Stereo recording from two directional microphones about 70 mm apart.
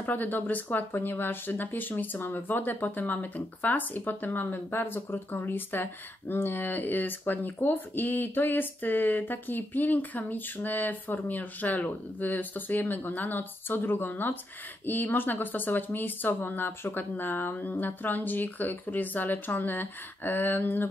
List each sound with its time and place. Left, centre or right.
0.0 s speech: left